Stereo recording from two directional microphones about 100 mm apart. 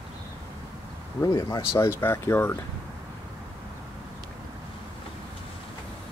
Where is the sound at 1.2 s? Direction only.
35° left (ahead or behind).